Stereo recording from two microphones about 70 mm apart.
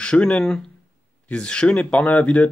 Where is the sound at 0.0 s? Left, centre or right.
Centre.